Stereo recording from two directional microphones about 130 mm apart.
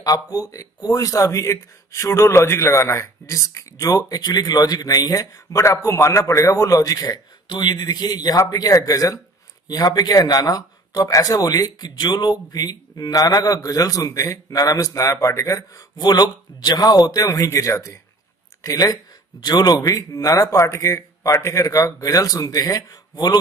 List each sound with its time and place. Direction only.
0.0 s speech: 30° left (ahead or behind)